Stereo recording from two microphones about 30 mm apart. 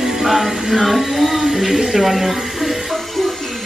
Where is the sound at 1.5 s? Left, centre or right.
Centre.